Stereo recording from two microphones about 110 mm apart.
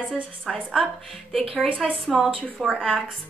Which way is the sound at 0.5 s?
5° left (ahead or behind).